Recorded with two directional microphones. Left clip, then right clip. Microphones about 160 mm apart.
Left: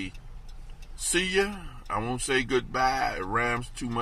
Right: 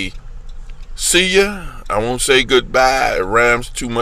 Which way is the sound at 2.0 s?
20° right (ahead or behind).